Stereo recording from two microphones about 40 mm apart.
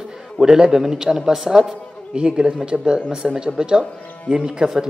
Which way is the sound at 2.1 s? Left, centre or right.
Right.